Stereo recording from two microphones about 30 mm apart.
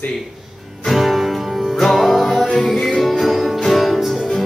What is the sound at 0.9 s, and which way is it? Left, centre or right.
Music, centre.